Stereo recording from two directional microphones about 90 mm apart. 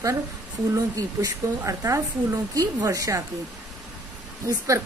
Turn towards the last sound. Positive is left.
turn(degrees=-35)  # may be behind; listen again after turning